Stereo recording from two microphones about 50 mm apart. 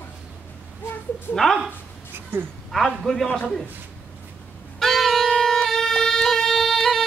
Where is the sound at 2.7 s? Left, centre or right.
Centre.